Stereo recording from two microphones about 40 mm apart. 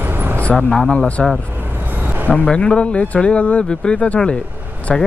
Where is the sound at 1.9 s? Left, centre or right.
Right.